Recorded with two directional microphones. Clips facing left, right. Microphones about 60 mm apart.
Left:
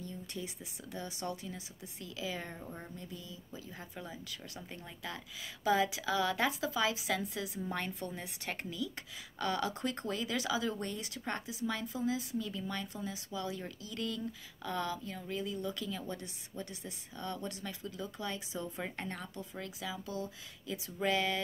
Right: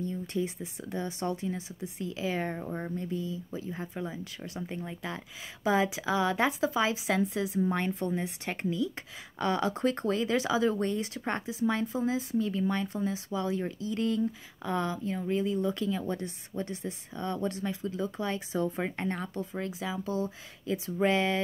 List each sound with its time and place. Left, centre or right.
0.0 s speech: right